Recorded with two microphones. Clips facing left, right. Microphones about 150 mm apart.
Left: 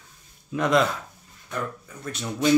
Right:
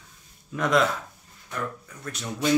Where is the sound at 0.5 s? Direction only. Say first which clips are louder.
Left 2 dB; centre (ahead or behind).